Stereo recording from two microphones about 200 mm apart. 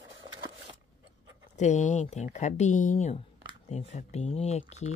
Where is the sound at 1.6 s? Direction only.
35° left (ahead or behind).